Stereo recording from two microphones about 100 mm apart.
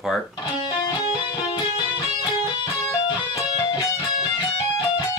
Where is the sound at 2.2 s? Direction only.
50° left (ahead or behind).